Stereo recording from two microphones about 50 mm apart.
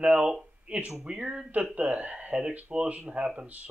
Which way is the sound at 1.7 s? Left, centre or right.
Right.